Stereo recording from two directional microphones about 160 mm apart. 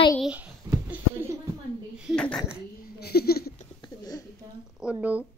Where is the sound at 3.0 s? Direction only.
75° left (ahead or behind).